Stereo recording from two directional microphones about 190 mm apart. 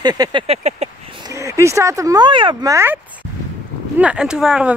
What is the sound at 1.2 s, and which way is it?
Speech, 15° right (ahead or behind).